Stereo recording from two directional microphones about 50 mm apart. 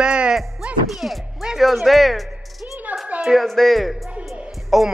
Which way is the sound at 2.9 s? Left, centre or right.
Right.